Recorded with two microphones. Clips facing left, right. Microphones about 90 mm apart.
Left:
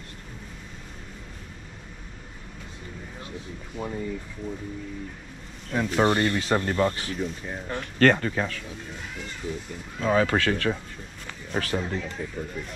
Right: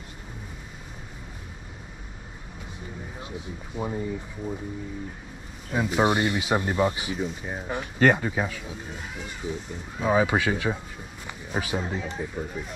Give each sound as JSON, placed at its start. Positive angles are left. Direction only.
{"t": 3.2, "sound": "speech", "side_deg": -15}
{"t": 5.7, "sound": "speech", "side_deg": -10}